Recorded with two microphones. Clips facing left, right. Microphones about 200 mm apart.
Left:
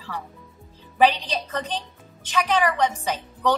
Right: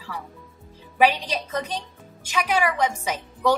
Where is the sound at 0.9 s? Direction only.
10° right (ahead or behind).